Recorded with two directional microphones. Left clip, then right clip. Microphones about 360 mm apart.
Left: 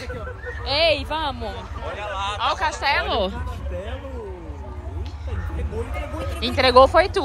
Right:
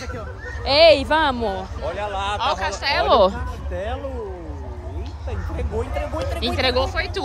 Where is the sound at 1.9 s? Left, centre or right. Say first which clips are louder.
Right 2 dB; right.